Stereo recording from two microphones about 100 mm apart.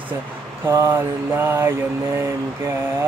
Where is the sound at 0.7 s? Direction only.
25° right (ahead or behind).